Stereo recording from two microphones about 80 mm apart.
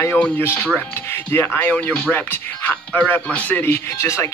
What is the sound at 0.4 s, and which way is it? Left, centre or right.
Speech, left.